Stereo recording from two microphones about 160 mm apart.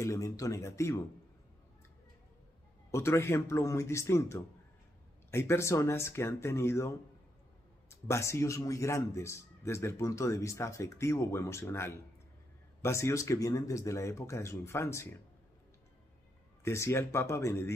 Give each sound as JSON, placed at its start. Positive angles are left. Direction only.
{"t": 0.0, "sound": "speech", "side_deg": 20}
{"t": 2.9, "sound": "a man's voice", "side_deg": 15}
{"t": 7.9, "sound": "a man's voice", "side_deg": 15}
{"t": 16.6, "sound": "a man's voice", "side_deg": 15}